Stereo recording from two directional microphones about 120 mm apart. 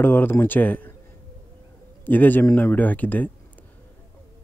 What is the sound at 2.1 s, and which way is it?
Speech, 15° left (ahead or behind).